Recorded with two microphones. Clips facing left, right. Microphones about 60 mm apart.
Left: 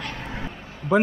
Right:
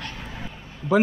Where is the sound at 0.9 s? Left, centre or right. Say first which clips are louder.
Right 1 dB; centre.